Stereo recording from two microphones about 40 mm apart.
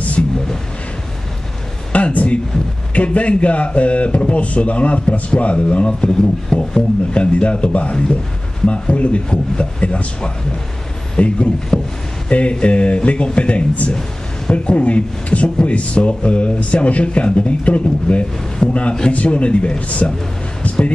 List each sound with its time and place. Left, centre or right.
1.9 s a sound: left
2.9 s speech: left
20.6 s basketball bounce: left